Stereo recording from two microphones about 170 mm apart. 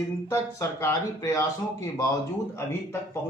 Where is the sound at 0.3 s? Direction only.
15° left (ahead or behind).